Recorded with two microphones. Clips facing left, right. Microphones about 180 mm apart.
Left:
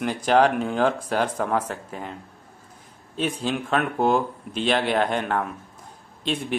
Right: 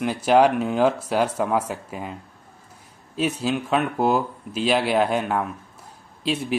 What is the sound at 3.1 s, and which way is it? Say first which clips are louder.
Speech: right 2 dB; 5° right (ahead or behind).